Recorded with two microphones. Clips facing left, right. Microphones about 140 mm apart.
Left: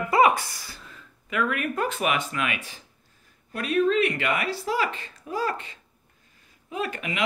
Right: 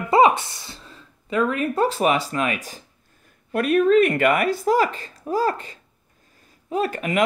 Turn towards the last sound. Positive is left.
turn(degrees=-45)  # may be behind; listen again after turning